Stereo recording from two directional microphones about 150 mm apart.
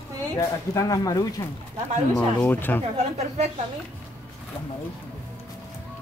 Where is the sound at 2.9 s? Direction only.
45° right (ahead or behind).